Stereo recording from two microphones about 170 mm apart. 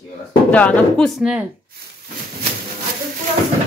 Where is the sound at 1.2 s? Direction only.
5° right (ahead or behind).